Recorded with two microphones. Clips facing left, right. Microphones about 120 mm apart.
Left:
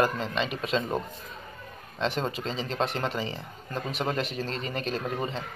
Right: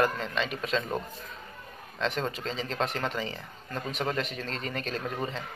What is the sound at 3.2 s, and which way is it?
Speech, 30° left (ahead or behind).